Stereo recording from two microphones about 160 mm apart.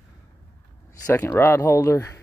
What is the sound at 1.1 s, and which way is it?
Speech, 15° left (ahead or behind).